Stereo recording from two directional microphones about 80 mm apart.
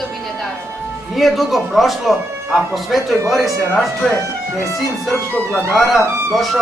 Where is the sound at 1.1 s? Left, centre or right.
Centre.